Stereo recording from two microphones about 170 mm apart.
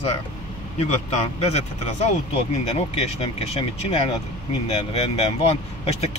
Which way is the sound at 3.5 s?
35° left (ahead or behind).